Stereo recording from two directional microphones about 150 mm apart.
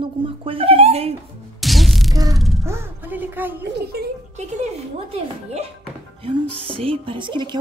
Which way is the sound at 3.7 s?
90° right.